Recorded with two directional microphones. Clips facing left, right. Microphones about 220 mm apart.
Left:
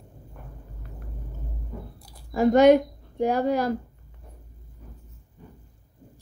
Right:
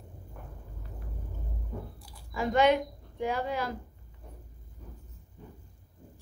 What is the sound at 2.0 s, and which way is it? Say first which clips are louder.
Speech: left 11 dB; 40° left (ahead or behind).